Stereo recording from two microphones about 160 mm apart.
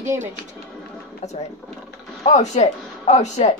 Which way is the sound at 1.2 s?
45° left (ahead or behind).